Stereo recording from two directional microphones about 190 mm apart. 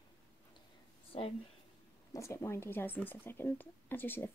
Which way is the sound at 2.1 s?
15° left (ahead or behind).